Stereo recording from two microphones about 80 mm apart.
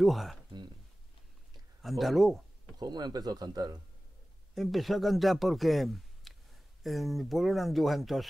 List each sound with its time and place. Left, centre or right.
0.0 s speech: centre
1.8 s speech: centre
2.8 s speech: right
4.6 s speech: centre